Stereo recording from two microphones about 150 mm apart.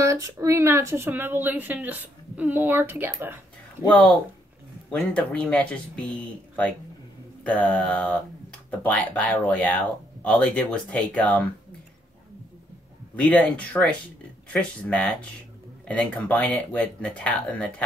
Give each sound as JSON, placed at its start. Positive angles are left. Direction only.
{"t": 0.0, "sound": "a woman's voice", "side_deg": -20}
{"t": 4.9, "sound": "speech", "side_deg": 5}
{"t": 13.1, "sound": "speech", "side_deg": 10}